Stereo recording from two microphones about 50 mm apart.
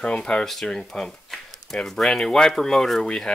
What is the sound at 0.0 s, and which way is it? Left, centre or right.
Speech, left.